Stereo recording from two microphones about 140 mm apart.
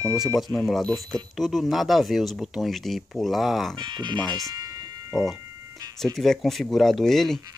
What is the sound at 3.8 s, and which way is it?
Speech, 30° right (ahead or behind).